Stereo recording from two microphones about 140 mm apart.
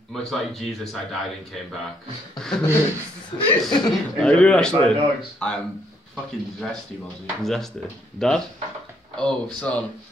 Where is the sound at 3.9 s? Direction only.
5° left (ahead or behind).